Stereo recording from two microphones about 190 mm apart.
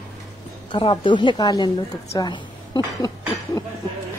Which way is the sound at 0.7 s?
25° left (ahead or behind).